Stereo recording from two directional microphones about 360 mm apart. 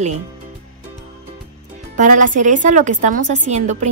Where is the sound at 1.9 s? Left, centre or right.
Right.